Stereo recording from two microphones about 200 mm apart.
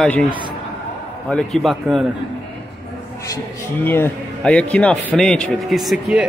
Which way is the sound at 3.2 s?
15° left (ahead or behind).